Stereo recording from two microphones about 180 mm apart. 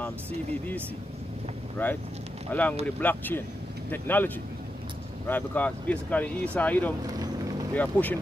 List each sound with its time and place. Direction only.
1.8 s speech: 10° left (ahead or behind)
5.3 s speech: 10° left (ahead or behind)
7.0 s speech: 20° right (ahead or behind)
7.7 s speech: 10° left (ahead or behind)